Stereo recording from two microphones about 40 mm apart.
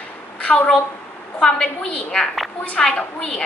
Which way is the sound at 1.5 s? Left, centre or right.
Left.